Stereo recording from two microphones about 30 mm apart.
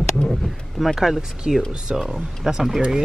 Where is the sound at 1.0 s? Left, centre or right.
Centre.